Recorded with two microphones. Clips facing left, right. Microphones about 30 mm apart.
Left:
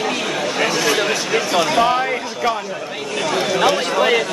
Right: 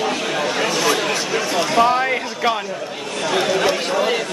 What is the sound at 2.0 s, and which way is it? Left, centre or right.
Speech, centre.